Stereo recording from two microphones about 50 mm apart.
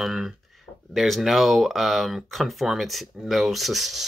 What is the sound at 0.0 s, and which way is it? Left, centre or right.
Speech, centre.